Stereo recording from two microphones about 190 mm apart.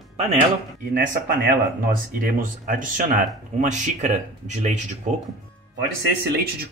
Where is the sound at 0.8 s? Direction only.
50° right (ahead or behind).